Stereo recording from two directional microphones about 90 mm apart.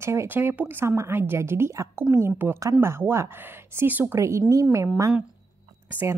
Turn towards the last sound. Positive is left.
turn(degrees=-25)  # may be behind; listen again after turning